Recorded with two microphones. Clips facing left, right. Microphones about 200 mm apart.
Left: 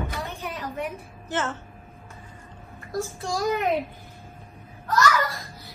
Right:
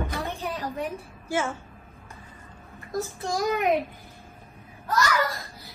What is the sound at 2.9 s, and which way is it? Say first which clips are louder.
Child singing: even; 20° right (ahead or behind).